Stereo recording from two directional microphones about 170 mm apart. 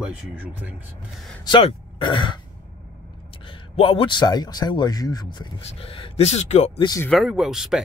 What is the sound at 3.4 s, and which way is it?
Speech, 35° left (ahead or behind).